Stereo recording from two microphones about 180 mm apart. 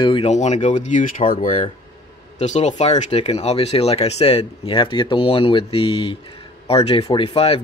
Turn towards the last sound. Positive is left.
turn(degrees=30)  # may be behind; listen again after turning